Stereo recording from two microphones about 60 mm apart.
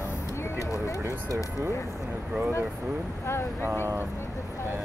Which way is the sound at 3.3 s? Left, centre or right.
Left.